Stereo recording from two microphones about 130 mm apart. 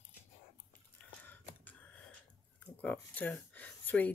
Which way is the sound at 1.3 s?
15° left (ahead or behind).